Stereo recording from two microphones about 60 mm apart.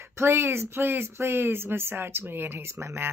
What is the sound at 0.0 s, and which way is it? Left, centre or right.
Speech, right.